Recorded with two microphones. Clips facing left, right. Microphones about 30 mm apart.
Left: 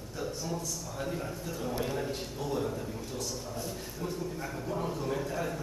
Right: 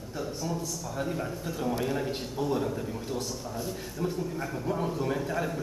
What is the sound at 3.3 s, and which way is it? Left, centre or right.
A man's voice, centre.